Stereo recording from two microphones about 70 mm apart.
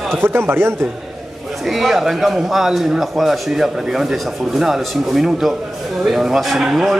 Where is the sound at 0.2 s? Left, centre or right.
Right.